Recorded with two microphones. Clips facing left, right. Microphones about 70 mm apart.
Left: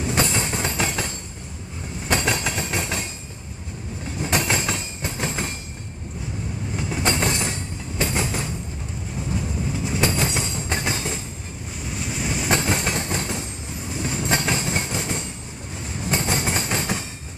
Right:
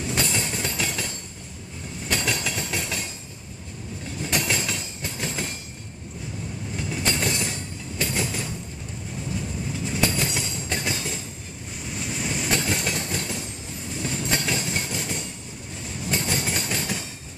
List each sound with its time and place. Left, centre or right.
0.0 s train: left
4.2 s train: left
6.8 s train: left
11.9 s waves: centre
12.4 s train: left